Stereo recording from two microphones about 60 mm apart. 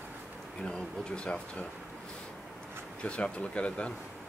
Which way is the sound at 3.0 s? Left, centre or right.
Centre.